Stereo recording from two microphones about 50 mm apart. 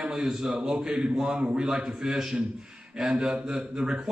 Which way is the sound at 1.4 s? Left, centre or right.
Right.